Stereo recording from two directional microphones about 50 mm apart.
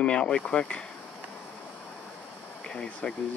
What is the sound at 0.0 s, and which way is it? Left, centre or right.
Speech, left.